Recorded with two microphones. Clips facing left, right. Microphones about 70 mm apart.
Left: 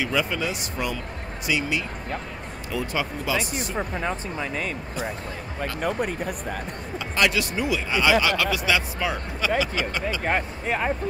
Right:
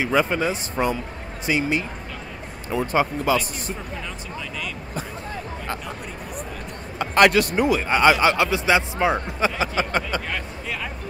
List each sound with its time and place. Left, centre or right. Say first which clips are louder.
0.0 s a man's voice: right 4 dB; right
3.7 s speech: left 6 dB; left
5.8 s speech: left 8 dB; left
7.0 s a man's voice: right 7 dB; right
10.2 s speech: left 5 dB; left